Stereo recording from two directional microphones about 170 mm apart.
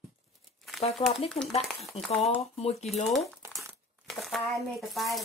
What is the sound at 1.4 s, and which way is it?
Speech, 40° left (ahead or behind).